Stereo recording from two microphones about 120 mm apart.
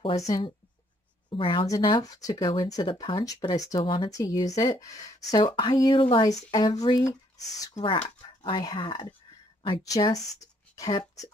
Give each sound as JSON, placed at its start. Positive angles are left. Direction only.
{"t": 0.2, "sound": "speech", "side_deg": 35}
{"t": 1.3, "sound": "speech", "side_deg": 45}
{"t": 4.1, "sound": "speech", "side_deg": 30}
{"t": 5.4, "sound": "speech", "side_deg": 45}
{"t": 6.2, "sound": "speech", "side_deg": 35}
{"t": 7.8, "sound": "speech", "side_deg": 85}
{"t": 8.4, "sound": "speech", "side_deg": 40}
{"t": 9.9, "sound": "speech", "side_deg": 30}